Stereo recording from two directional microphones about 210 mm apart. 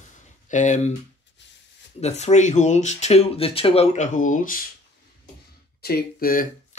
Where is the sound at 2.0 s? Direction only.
30° left (ahead or behind).